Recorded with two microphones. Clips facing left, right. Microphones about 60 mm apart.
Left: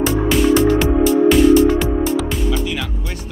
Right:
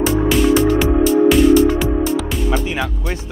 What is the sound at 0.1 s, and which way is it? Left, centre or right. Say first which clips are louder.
Music: right 1 dB; centre.